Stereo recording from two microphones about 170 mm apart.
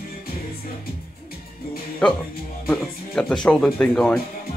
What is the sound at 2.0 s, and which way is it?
Speech, 5° left (ahead or behind).